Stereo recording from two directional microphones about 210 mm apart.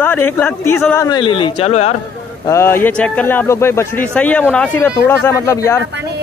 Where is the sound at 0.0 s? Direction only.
10° left (ahead or behind); by 2.0 s 30° left (ahead or behind).